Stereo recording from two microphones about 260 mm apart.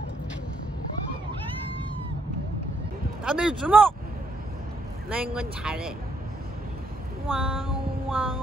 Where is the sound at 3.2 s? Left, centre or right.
Centre.